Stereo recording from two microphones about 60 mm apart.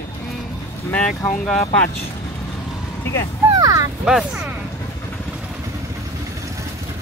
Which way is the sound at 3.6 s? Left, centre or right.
Right.